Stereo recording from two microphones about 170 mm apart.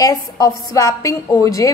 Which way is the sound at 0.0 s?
20° left (ahead or behind).